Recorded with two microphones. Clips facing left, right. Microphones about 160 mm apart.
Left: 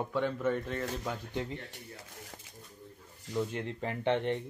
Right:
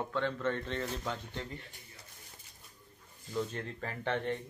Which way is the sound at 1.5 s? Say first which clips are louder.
Left 6 dB; 80° left.